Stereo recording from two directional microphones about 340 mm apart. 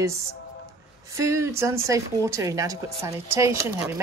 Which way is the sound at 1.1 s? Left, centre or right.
Centre.